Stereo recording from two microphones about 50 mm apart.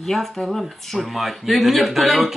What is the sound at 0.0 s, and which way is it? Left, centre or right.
A woman's voice, centre.